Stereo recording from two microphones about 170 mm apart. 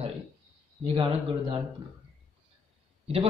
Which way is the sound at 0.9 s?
30° right (ahead or behind).